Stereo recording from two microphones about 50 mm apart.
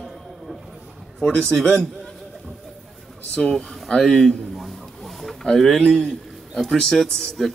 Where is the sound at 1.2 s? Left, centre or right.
Centre.